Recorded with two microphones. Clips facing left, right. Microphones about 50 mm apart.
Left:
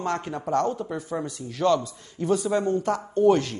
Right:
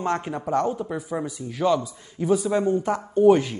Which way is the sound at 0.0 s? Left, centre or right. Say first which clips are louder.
Right 2 dB; centre.